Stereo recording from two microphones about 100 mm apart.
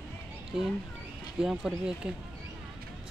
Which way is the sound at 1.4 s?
5° right (ahead or behind).